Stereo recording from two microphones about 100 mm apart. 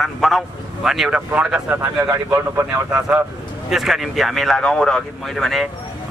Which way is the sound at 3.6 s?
5° right (ahead or behind).